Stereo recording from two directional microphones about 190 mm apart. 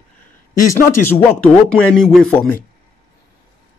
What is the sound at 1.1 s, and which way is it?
Speech, 10° left (ahead or behind).